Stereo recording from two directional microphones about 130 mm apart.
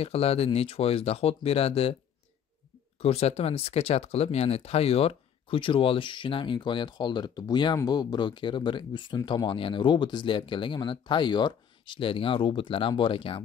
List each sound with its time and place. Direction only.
0.0 s speech: 50° left (ahead or behind)
3.0 s speech: 55° left (ahead or behind)